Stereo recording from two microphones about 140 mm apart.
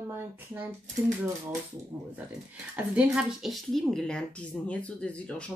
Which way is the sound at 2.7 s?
10° right (ahead or behind).